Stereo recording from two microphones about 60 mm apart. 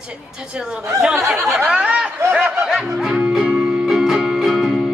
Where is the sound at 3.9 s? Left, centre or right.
Centre.